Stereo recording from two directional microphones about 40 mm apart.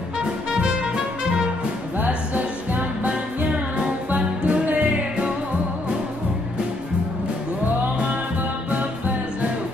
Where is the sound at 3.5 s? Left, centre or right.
Right.